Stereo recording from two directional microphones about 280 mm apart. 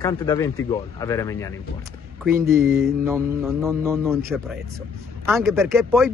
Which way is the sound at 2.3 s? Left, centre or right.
Centre.